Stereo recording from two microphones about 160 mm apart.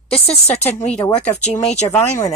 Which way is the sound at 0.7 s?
10° left (ahead or behind).